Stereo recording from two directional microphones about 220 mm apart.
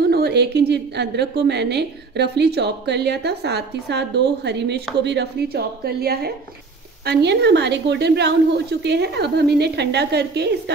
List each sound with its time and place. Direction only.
0.1 s a woman's voice: 50° right (ahead or behind)